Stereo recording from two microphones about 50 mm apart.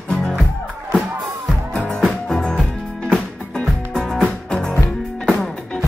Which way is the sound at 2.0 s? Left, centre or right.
Centre.